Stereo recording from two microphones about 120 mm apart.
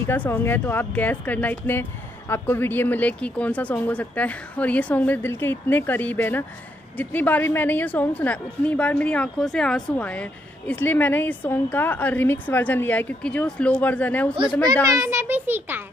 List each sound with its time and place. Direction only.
0.0 s speech: 15° left (ahead or behind)
14.3 s a child's voice: 45° right (ahead or behind)
15.0 s a child's voice: 20° right (ahead or behind)